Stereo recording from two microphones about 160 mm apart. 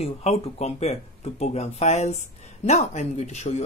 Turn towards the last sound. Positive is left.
turn(degrees=45)  # may be behind; listen again after turning